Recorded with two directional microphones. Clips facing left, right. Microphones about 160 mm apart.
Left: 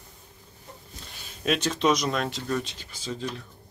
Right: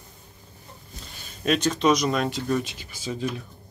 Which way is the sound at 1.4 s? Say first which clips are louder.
Right 3 dB; centre (ahead or behind).